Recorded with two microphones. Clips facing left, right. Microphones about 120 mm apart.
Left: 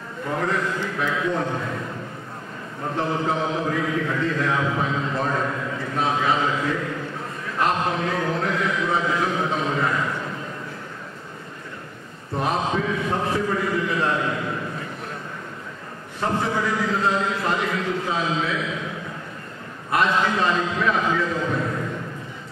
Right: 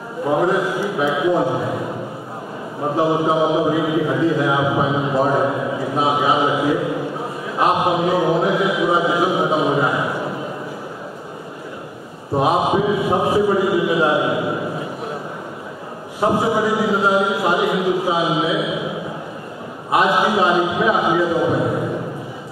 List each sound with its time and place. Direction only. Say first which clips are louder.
0.2 s a man's voice: right 7 dB; 15° right (ahead or behind)
3.0 s a man's voice: right 7 dB; 10° right (ahead or behind)
12.4 s a man's voice: right 7 dB; 10° right (ahead or behind)
16.2 s a man's voice: right 6 dB; 10° right (ahead or behind)